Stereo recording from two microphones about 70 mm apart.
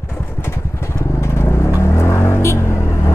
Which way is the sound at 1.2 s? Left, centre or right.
Left.